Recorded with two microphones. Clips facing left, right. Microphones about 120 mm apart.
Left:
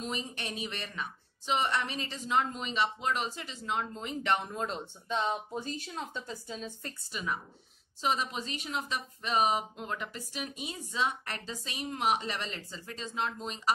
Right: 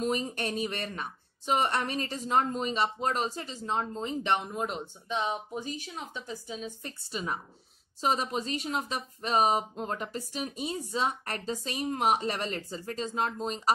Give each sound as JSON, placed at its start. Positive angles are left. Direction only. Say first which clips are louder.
{"t": 0.0, "sound": "speech", "louder": "right 7 dB", "side_deg": -45}
{"t": 7.1, "sound": "speech", "louder": "right 2 dB", "side_deg": -35}